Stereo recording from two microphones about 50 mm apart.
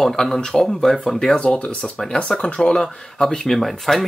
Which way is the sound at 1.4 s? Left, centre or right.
Left.